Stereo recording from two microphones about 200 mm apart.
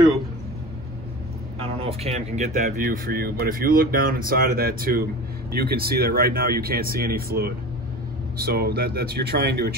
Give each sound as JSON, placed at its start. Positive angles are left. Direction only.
{"t": 1.8, "sound": "speech", "side_deg": -30}